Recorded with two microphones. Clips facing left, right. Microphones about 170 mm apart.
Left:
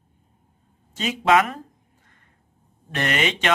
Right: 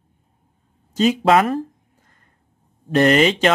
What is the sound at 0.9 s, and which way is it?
Speech, 35° right (ahead or behind).